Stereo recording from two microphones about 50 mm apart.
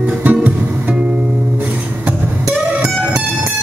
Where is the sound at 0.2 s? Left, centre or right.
Right.